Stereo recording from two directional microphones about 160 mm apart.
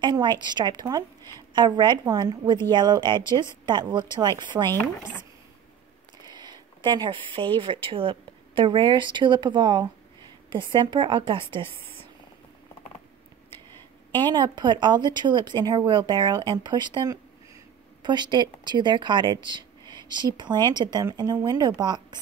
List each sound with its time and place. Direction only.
0.0 s speech: 30° right (ahead or behind)
6.3 s speech: 30° right (ahead or behind)
14.2 s speech: 25° right (ahead or behind)